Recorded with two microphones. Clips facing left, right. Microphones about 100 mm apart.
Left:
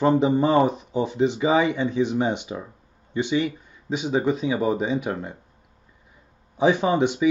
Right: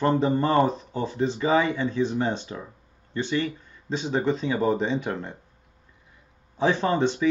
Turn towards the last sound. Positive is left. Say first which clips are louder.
# left 2 dB
turn(degrees=15)  # may be behind; listen again after turning